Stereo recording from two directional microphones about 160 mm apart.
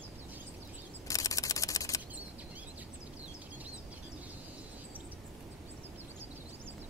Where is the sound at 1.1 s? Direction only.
20° left (ahead or behind).